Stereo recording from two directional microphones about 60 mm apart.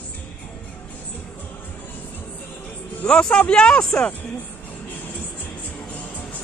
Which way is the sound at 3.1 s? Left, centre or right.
Centre.